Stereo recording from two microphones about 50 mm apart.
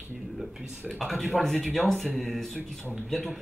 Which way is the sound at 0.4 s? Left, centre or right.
Centre.